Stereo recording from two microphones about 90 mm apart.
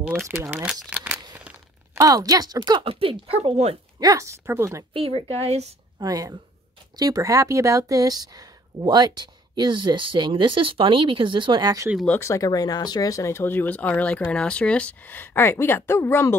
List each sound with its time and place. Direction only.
0.6 s speech: 10° right (ahead or behind)
1.3 s a sound: 20° right (ahead or behind)
2.0 s speech: 40° right (ahead or behind)
2.8 s speech: 90° right
4.0 s speech: 40° right (ahead or behind)
4.9 s speech: 90° right
5.9 s speech: 45° right (ahead or behind)
12.2 s speech: 40° left (ahead or behind)